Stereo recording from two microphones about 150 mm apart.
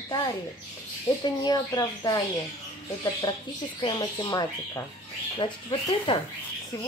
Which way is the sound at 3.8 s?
30° left (ahead or behind).